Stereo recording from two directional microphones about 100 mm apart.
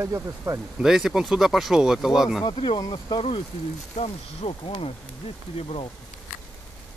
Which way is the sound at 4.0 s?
70° left (ahead or behind).